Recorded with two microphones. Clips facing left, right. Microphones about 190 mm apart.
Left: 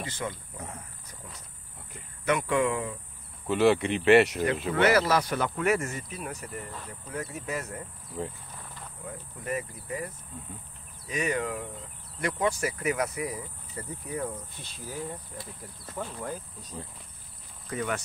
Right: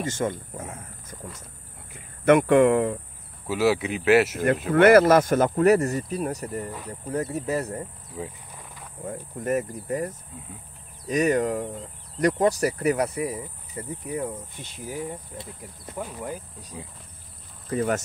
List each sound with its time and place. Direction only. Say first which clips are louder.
0.0 s speech: right 8 dB; 45° right (ahead or behind)
2.2 s speech: right 9 dB; 55° right (ahead or behind)
3.4 s speech: even; 5° right (ahead or behind)
4.7 s speech: right 9 dB; 50° right (ahead or behind); by 7.8 s 35° right (ahead or behind)
8.2 s speech: even; 5° right (ahead or behind)
9.0 s speech: right 9 dB; 45° right (ahead or behind)
13.4 s speech: right 4 dB; 15° right (ahead or behind)
17.6 s speech: right 7 dB; 35° right (ahead or behind)